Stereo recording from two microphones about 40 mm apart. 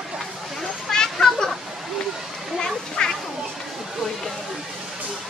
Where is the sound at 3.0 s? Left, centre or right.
Left.